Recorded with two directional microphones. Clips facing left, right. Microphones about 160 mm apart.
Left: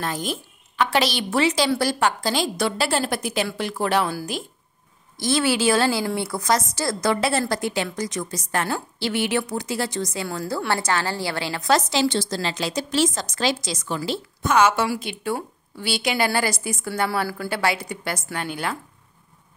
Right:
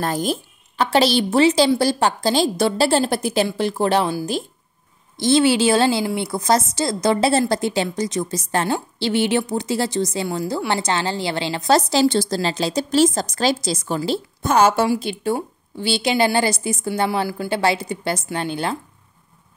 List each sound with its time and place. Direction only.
0.0 s a woman's voice: 40° right (ahead or behind)
5.2 s a woman's voice: 25° right (ahead or behind)